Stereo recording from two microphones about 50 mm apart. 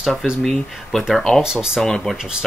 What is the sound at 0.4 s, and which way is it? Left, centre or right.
Speech, centre.